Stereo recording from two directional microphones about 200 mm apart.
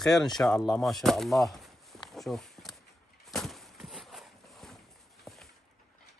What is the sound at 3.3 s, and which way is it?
Walk, centre (ahead or behind).